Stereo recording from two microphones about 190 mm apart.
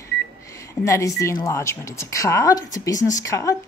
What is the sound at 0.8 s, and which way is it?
A woman's voice, 15° left (ahead or behind).